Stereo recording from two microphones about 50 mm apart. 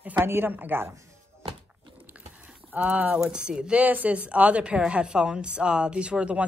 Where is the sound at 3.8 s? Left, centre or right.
Right.